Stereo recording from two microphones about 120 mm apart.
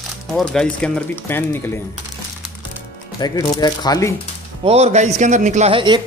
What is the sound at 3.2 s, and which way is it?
Speech, 35° left (ahead or behind).